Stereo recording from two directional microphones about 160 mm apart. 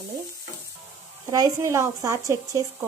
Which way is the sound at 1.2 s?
20° right (ahead or behind).